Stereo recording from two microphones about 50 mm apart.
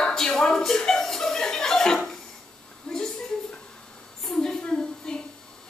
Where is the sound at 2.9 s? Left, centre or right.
Centre.